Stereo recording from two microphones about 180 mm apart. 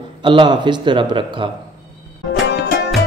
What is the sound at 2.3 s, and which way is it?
Music, 65° left (ahead or behind).